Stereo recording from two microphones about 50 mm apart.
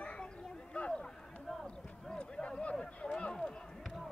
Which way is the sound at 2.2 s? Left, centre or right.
Centre.